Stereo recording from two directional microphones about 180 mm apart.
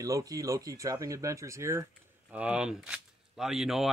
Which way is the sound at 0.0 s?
20° right (ahead or behind).